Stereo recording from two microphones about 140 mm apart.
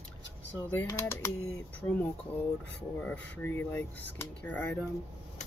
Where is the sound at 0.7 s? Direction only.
15° left (ahead or behind).